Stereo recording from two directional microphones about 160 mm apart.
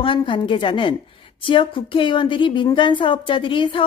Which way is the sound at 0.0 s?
30° left (ahead or behind).